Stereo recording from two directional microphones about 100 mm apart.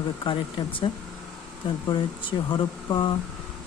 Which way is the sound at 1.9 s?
50° left (ahead or behind).